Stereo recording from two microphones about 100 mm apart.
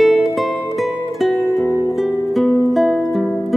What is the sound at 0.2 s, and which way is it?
Music, centre (ahead or behind).